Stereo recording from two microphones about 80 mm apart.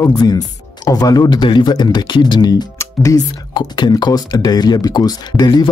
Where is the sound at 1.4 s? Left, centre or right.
Left.